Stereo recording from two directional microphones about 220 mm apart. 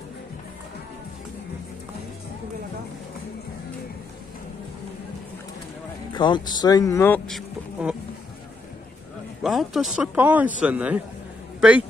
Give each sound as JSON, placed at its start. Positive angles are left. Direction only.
{"t": 6.1, "sound": "speech", "side_deg": 20}
{"t": 7.2, "sound": "a sound", "side_deg": 0}
{"t": 9.4, "sound": "a man's voice", "side_deg": 0}